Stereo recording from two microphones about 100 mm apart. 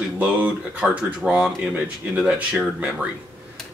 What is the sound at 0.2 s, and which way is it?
Speech, 10° right (ahead or behind).